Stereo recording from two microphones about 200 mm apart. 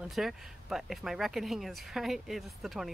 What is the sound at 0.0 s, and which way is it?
Speech, centre (ahead or behind).